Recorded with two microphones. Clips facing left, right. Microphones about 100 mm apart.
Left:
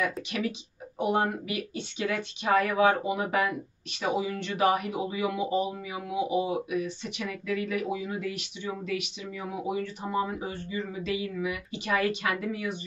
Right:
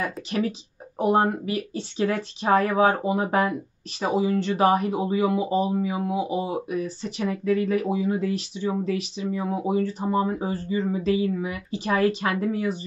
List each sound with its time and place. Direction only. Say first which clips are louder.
0.0 s speech: right 3 dB; 35° right (ahead or behind)